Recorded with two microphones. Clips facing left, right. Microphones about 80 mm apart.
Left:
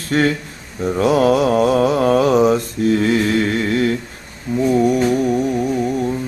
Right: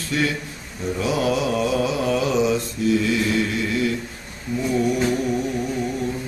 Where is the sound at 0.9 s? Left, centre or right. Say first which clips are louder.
Left 8 dB; left.